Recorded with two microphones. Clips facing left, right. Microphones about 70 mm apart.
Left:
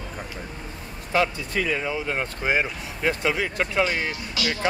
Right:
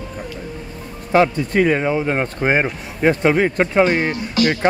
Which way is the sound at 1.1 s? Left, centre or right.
Right.